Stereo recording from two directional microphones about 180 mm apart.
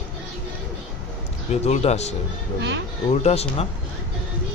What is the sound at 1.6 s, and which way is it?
Speech, 35° left (ahead or behind).